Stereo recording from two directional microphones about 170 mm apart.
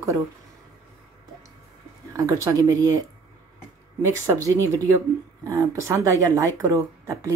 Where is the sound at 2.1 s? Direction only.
20° right (ahead or behind).